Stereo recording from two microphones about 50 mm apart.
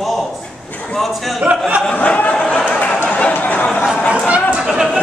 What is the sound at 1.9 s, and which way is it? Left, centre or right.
Speech, left.